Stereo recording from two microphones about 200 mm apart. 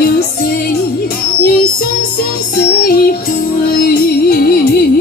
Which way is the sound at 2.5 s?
50° left (ahead or behind).